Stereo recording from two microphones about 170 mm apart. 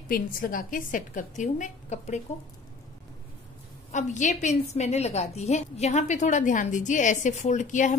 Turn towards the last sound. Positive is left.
turn(degrees=45)  # may be behind; listen again after turning